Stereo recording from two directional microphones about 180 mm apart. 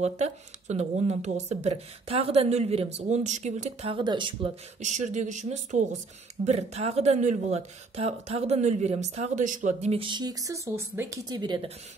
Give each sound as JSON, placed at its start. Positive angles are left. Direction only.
{"t": 0.0, "sound": "speech", "side_deg": -40}
{"t": 4.7, "sound": "speech", "side_deg": -40}